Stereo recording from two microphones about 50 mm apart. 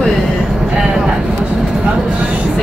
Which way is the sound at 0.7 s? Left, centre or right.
Centre.